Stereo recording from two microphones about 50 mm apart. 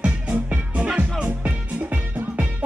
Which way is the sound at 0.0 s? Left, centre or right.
Right.